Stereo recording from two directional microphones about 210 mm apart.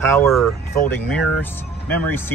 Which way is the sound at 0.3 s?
5° left (ahead or behind).